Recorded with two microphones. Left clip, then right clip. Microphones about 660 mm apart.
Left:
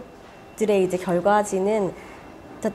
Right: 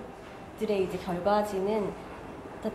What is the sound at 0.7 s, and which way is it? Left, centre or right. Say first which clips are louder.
A woman's voice: left 9 dB; left.